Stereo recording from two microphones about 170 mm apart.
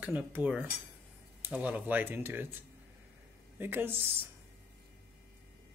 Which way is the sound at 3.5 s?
10° right (ahead or behind).